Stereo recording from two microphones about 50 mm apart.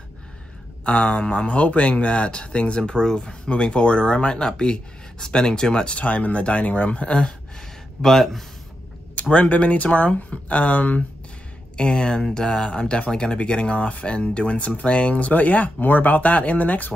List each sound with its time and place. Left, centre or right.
0.8 s speech: left
5.9 s speech: left
8.0 s speech: centre
9.1 s speech: left
11.7 s speech: centre; by 16.9 s left